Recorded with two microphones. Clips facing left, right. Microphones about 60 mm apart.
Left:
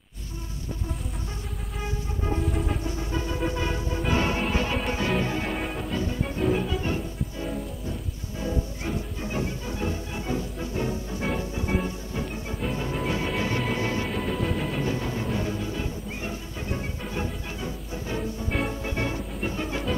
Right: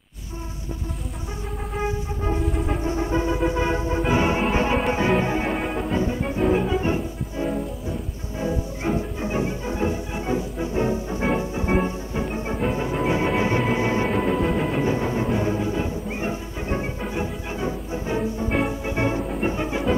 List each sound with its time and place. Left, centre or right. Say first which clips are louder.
2.4 s music: right 3 dB; centre
2.8 s music: right 7 dB; right
5.5 s music: right 5 dB; centre
5.9 s music: right 7 dB; right
6.2 s music: right 3 dB; centre
6.6 s music: right 6 dB; right
14.4 s music: right 5 dB; centre
14.8 s music: right 6 dB; right
18.5 s music: right 3 dB; centre